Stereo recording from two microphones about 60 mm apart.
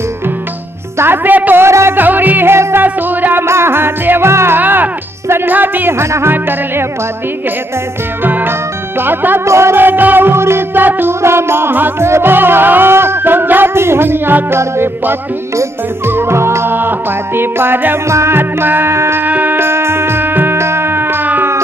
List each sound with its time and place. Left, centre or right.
0.9 s music: right
1.6 s music: right
2.0 s music: right
2.5 s music: right
2.8 s music: right
3.4 s music: right
4.6 s music: right
8.2 s music: right
9.5 s music: right
10.7 s music: right
19.2 s music: right